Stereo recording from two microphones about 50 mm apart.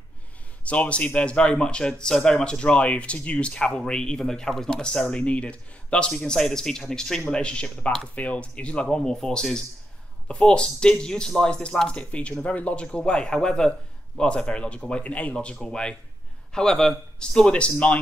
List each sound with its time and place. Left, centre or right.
0.7 s speech: left
11.9 s speech: left